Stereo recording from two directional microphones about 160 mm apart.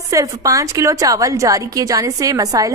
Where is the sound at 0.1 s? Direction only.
20° right (ahead or behind).